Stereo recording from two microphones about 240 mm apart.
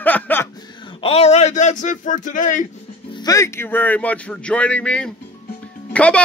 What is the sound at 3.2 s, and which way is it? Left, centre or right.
Speech, centre.